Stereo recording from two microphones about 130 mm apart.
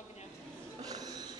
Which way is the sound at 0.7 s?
30° right (ahead or behind).